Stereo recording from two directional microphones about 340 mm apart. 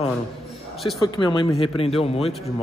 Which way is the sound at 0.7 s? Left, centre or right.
Centre.